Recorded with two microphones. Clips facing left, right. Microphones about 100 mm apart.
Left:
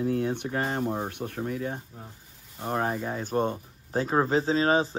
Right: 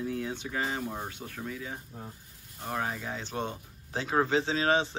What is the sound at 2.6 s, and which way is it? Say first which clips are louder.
Speech: left 5 dB; 35° left (ahead or behind).